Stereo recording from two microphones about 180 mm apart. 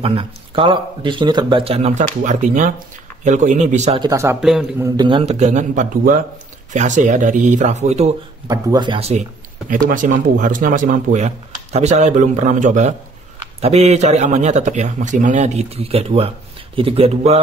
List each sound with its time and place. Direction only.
0.0 s speech: 30° right (ahead or behind)
4.0 s speech: 15° right (ahead or behind)
4.4 s a man's voice: centre (ahead or behind)
4.7 s a man's voice: 20° right (ahead or behind); by 8.1 s 40° right (ahead or behind)
8.5 s speech: 25° right (ahead or behind)
9.7 s a man's voice: 45° right (ahead or behind)